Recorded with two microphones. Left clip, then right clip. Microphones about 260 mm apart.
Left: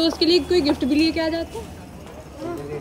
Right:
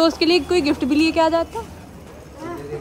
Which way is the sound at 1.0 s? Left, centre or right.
Centre.